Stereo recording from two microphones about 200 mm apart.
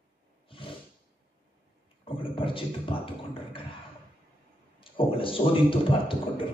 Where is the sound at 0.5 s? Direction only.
25° left (ahead or behind).